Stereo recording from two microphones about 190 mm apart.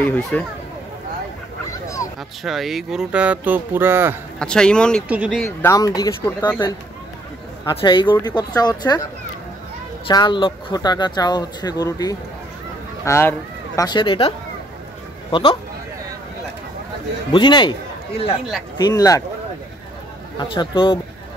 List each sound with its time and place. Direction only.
0.0 s speech: 10° left (ahead or behind)
1.7 s dog: 15° left (ahead or behind)
2.4 s speech: centre (ahead or behind)
4.4 s speech: 5° left (ahead or behind)
5.0 s speech: 5° right (ahead or behind)
5.6 s speech: 15° left (ahead or behind)
7.6 s speech: 25° left (ahead or behind)
10.0 s speech: 25° left (ahead or behind)
17.3 s a man's voice: 25° left (ahead or behind)
18.8 s speech: 20° left (ahead or behind)
20.3 s speech: 25° left (ahead or behind)